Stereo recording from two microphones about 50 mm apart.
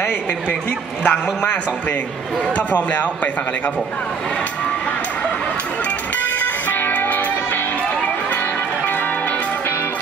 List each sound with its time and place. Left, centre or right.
1.0 s a man's voice: left
6.4 s music: left